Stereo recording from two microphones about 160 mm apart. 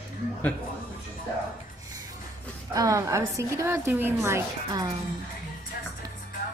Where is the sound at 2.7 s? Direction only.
20° right (ahead or behind).